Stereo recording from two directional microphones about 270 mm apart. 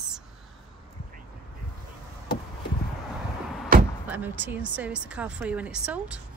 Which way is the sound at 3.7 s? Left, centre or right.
Right.